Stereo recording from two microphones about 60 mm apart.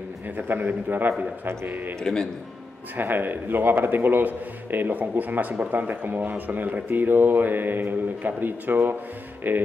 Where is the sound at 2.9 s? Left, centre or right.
Right.